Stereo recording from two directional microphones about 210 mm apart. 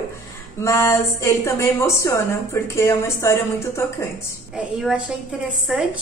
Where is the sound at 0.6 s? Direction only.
15° left (ahead or behind).